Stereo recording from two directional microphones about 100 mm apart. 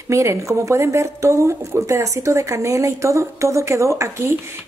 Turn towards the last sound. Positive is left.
turn(degrees=-30)  # may be behind; listen again after turning